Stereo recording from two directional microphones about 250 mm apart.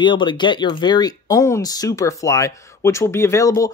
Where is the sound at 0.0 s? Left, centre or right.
Centre.